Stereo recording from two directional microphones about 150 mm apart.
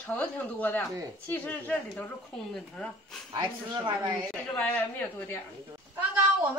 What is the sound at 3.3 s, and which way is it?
Speech, 30° right (ahead or behind).